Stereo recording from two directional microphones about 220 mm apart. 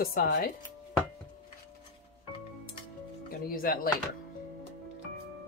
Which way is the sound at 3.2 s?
40° left (ahead or behind).